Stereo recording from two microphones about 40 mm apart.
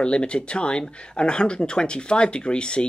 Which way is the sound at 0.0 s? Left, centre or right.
Left.